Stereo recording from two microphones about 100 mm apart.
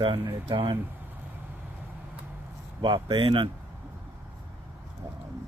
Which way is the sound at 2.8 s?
50° right (ahead or behind).